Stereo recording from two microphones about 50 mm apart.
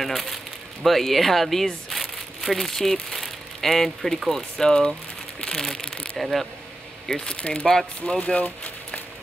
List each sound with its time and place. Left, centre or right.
0.0 s speech: centre
6.1 s speech: centre
7.1 s speech: centre